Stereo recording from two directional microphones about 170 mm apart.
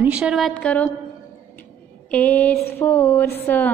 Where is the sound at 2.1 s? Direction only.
10° left (ahead or behind).